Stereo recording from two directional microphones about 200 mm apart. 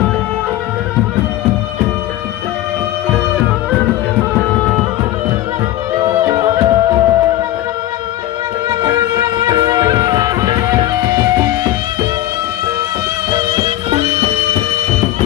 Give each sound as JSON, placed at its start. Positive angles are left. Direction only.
{"t": 4.4, "sound": "music", "side_deg": 0}
{"t": 5.9, "sound": "music", "side_deg": -20}
{"t": 8.6, "sound": "music", "side_deg": -20}